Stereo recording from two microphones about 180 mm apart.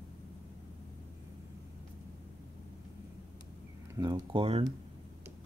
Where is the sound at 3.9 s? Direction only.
25° right (ahead or behind).